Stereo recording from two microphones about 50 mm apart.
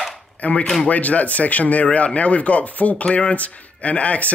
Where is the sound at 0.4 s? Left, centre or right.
Left.